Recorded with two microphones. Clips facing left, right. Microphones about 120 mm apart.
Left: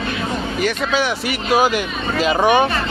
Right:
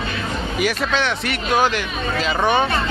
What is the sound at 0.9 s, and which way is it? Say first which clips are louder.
Speech: left 2 dB; 5° left (ahead or behind).